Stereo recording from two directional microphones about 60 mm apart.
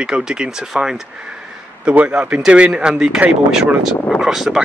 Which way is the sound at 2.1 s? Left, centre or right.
Centre.